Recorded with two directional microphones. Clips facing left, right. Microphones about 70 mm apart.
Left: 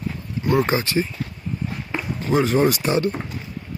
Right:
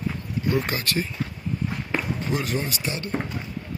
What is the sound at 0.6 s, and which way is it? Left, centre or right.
Speech, left.